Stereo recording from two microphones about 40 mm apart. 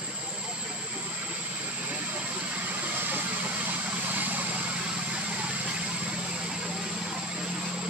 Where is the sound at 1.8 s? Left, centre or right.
Right.